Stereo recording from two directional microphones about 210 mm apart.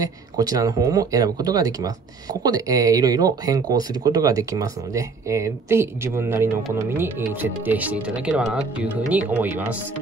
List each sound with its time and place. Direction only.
0.4 s speech: 15° right (ahead or behind)